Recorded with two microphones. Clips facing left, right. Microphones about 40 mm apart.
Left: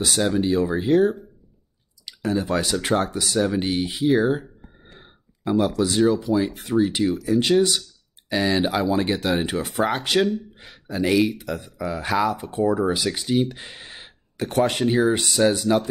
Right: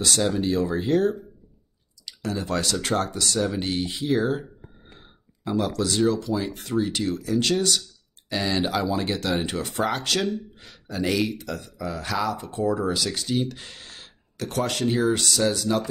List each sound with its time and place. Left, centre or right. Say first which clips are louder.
0.0 s speech: left 2 dB; centre
2.3 s speech: left 3 dB; centre